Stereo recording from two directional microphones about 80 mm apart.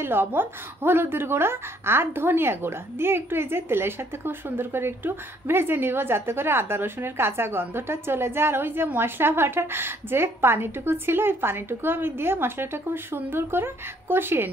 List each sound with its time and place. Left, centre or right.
0.0 s a woman's voice: right